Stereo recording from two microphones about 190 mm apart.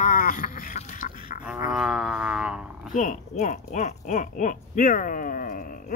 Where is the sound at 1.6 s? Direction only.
Centre (ahead or behind).